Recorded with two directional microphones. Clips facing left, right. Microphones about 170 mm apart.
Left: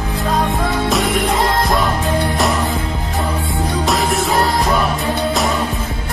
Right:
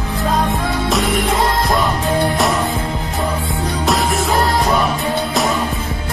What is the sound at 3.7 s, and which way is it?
Music, centre (ahead or behind).